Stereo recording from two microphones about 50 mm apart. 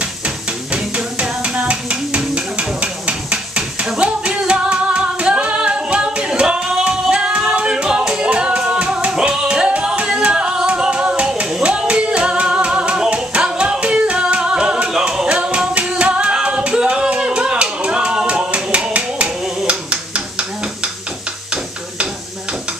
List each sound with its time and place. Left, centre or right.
0.9 s a sound: right
9.2 s music: right
14.9 s singing: centre